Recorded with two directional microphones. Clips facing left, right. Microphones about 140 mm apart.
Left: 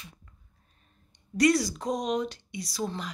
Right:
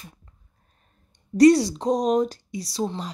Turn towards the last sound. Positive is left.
turn(degrees=-30)  # may be behind; listen again after turning